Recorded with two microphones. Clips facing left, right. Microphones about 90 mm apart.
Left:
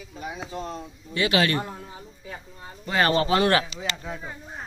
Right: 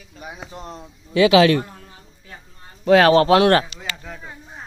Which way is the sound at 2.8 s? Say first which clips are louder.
Right 9 dB; 90° right.